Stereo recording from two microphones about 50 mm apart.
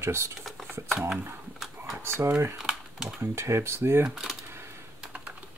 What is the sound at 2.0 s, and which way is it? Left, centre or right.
Speech, right.